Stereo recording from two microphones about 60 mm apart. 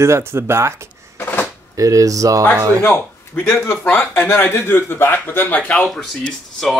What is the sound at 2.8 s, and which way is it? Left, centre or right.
A man's voice, left.